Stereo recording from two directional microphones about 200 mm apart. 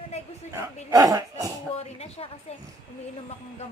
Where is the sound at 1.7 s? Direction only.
30° left (ahead or behind).